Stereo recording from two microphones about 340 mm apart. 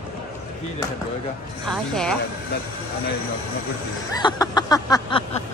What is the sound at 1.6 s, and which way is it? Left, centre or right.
Speech, centre.